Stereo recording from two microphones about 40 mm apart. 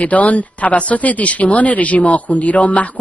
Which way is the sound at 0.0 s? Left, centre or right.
Left.